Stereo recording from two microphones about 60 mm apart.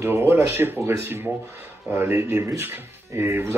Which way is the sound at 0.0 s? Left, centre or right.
Right.